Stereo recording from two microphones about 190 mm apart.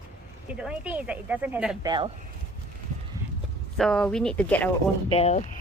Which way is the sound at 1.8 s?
25° right (ahead or behind).